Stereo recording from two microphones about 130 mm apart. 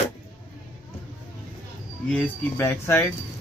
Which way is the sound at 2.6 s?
20° left (ahead or behind).